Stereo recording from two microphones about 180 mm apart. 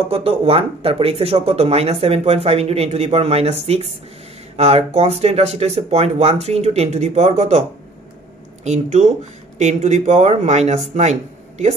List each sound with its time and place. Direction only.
0.1 s speech: 35° right (ahead or behind)
8.6 s speech: 40° right (ahead or behind)